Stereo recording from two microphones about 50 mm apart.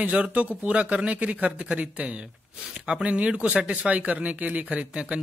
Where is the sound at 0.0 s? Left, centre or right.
Right.